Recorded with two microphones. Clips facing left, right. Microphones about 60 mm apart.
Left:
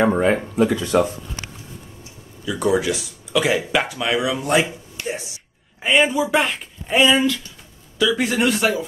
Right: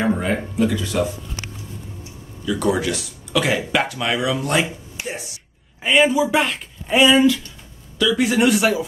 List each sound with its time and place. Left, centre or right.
0.0 s speech: left
2.4 s speech: centre
5.0 s a sound: centre
5.8 s speech: centre